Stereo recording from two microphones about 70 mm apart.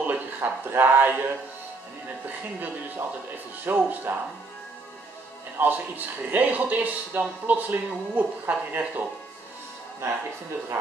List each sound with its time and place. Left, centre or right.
0.0 s speech: right
3.6 s a man's voice: right
5.6 s a man's voice: right
10.0 s speech: right